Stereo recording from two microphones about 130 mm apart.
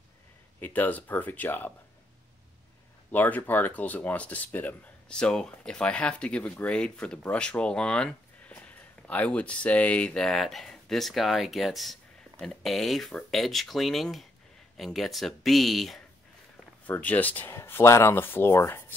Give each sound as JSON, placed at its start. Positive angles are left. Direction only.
{"t": 0.6, "sound": "speech", "side_deg": 15}
{"t": 3.1, "sound": "speech", "side_deg": 15}
{"t": 16.8, "sound": "speech", "side_deg": 10}